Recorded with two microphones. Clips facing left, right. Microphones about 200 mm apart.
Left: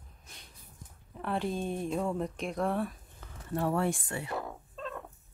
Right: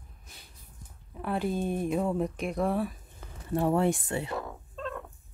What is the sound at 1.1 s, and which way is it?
Speech, 5° right (ahead or behind).